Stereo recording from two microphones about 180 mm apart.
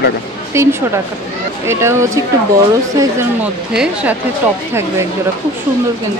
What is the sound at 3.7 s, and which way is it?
Speech, 5° right (ahead or behind).